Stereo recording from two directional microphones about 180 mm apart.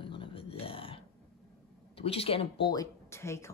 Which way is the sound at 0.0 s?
30° left (ahead or behind).